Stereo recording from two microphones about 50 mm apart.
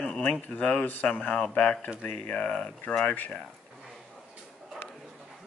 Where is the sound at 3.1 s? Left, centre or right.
Left.